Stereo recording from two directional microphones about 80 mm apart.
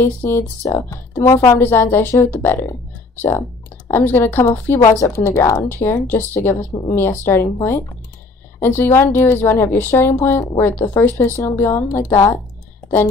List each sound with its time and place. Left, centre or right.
0.0 s a woman's voice: left
8.5 s a woman's voice: left